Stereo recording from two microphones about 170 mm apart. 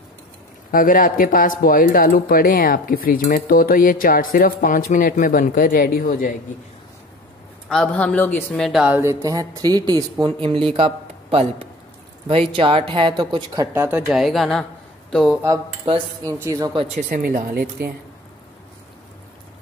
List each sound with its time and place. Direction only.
0.7 s speech: 55° left (ahead or behind)
7.6 s speech: 5° left (ahead or behind); by 13.7 s 25° right (ahead or behind)
13.7 s speech: 10° right (ahead or behind)
15.4 s speech: 20° right (ahead or behind)
17.1 s speech: 60° right (ahead or behind)